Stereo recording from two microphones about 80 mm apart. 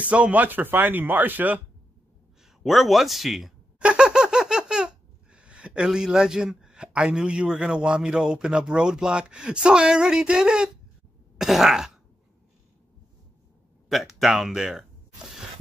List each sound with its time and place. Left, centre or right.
0.0 s speech: centre
2.6 s speech: centre
3.8 s a sound: centre
11.3 s throat clearing: centre
13.8 s speech: centre